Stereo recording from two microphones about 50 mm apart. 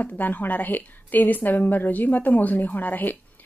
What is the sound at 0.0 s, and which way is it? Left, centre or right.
A woman's voice, left.